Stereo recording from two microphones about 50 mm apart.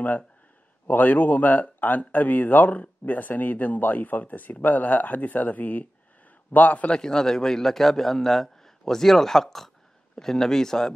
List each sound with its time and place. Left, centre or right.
0.8 s a man's voice: left
7.0 s a man's voice: centre